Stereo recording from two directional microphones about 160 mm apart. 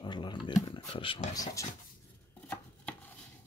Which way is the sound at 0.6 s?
30° left (ahead or behind).